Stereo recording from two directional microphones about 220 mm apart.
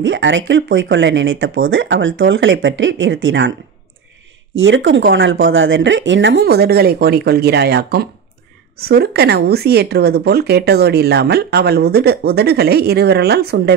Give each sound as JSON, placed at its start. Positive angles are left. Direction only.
{"t": 0.0, "sound": "speech", "side_deg": -55}
{"t": 4.6, "sound": "speech", "side_deg": -55}